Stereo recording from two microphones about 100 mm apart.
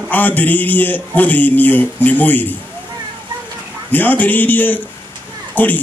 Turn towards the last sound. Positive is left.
turn(degrees=20)  # may be behind; listen again after turning